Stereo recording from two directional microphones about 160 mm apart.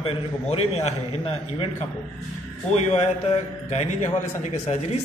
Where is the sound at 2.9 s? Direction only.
45° left (ahead or behind).